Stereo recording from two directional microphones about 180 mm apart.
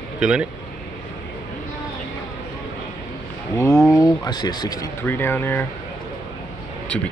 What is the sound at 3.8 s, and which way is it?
Speech, 20° left (ahead or behind).